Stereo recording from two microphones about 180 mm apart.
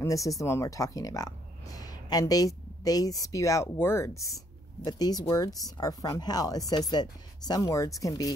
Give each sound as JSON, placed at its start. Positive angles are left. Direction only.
{"t": 0.0, "sound": "speech", "side_deg": 20}